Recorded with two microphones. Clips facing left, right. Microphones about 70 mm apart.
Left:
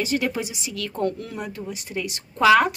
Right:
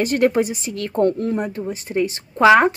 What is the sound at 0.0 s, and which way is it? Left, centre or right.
A woman's voice, right.